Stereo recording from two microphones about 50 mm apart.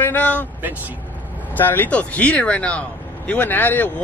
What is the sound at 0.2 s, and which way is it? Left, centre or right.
Speech, left.